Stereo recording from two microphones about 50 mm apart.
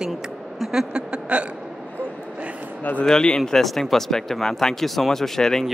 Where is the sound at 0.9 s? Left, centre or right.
Right.